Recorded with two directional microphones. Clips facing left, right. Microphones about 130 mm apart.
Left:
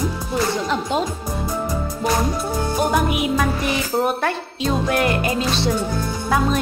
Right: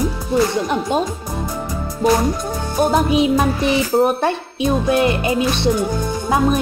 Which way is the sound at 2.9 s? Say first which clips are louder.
Right 4 dB; 25° right (ahead or behind).